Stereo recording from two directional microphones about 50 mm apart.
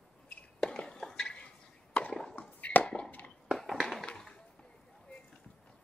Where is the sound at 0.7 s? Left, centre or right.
Centre.